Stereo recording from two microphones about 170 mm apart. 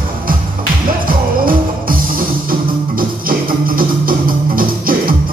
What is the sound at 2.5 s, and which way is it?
Music, 55° right (ahead or behind).